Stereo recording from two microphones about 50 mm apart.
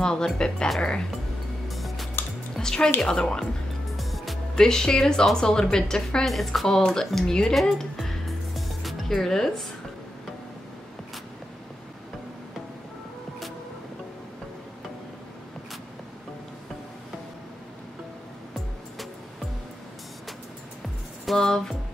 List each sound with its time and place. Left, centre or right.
0.0 s a woman's voice: centre
1.7 s music: centre
2.5 s music: centre
3.2 s a woman's voice: centre
3.9 s music: centre
4.6 s a woman's voice: centre
6.2 s a woman's voice: centre
7.6 s music: centre
9.1 s a woman's voice: centre
21.3 s a woman's voice: centre